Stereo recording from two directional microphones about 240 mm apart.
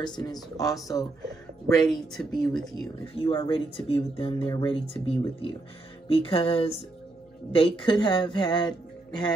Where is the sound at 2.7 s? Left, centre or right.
Centre.